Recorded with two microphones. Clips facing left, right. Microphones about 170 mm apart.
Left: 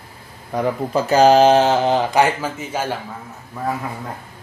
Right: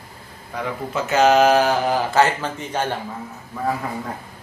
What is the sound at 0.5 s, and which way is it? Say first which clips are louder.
Speech: left 6 dB; 35° left (ahead or behind).